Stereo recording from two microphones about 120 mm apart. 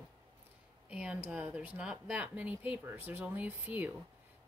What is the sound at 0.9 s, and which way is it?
Speech, 10° right (ahead or behind).